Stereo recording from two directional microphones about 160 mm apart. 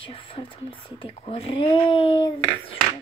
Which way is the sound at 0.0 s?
35° left (ahead or behind).